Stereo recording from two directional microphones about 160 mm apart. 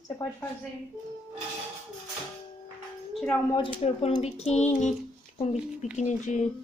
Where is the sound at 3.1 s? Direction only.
5° left (ahead or behind).